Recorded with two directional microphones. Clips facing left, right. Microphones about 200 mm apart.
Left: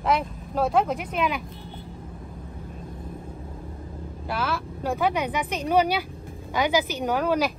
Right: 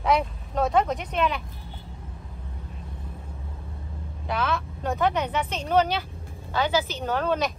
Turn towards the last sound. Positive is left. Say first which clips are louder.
# left 2 dB
turn(degrees=10)  # may be behind; listen again after turning